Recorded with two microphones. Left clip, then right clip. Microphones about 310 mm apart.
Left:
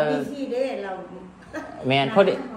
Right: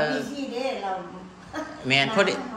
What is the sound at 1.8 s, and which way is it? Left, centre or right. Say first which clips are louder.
Speech: left 3 dB; centre.